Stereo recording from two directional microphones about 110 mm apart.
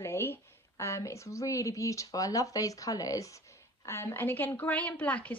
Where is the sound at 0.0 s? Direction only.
20° left (ahead or behind).